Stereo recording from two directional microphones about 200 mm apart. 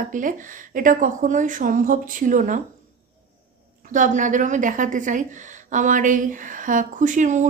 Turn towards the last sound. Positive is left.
turn(degrees=-40)  # may be behind; listen again after turning